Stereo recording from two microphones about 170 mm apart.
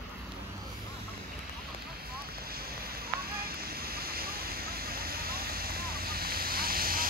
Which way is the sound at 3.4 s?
60° right (ahead or behind).